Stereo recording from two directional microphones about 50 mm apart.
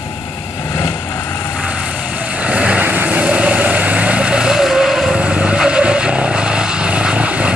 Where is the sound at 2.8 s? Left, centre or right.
Right.